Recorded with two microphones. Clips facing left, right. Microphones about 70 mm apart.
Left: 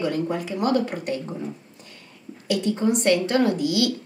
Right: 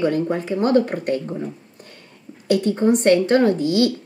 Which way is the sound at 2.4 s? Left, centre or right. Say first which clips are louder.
Right 5 dB; right.